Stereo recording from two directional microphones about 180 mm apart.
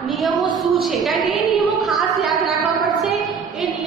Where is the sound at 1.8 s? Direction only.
Centre (ahead or behind).